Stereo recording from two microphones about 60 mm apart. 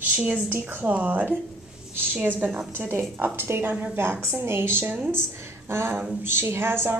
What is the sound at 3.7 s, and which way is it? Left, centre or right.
Speech, right.